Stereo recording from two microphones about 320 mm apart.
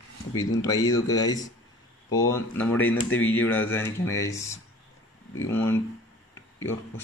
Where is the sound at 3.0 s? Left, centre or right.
Left.